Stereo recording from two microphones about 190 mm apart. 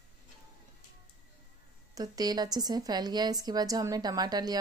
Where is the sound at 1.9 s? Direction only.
20° right (ahead or behind).